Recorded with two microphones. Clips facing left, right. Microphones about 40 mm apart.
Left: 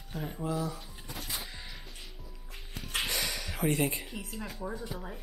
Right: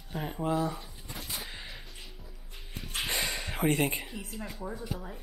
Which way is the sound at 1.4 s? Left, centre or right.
Centre.